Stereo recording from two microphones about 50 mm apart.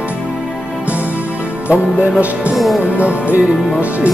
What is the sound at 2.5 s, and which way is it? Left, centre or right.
Music, centre.